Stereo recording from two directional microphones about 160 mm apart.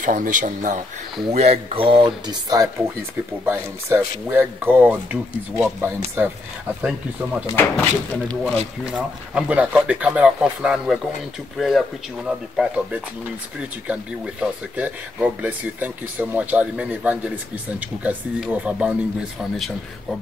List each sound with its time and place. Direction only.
0.0 s speech: 55° right (ahead or behind)
1.3 s speech: 40° right (ahead or behind); by 2.7 s 25° right (ahead or behind)
3.4 s speech: 15° right (ahead or behind)
7.7 s speech: 10° left (ahead or behind)
8.8 s speech: 5° right (ahead or behind)